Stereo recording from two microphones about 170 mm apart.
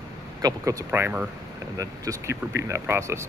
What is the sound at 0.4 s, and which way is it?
A man's voice, 20° right (ahead or behind).